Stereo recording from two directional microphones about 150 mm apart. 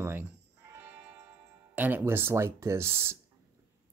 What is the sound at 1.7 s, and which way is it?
Speech, 10° right (ahead or behind).